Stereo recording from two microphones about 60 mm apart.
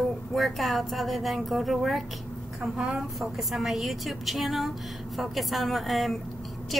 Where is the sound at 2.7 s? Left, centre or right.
Centre.